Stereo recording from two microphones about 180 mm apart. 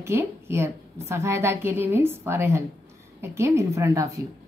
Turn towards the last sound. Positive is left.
turn(degrees=-15)  # may be behind; listen again after turning